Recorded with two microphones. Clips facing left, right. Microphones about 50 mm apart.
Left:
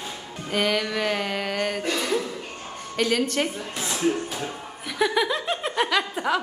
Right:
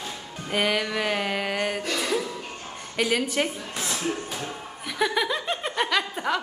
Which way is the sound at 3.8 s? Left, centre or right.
Centre.